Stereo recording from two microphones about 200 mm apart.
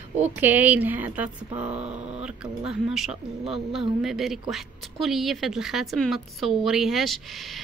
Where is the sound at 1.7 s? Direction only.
30° right (ahead or behind).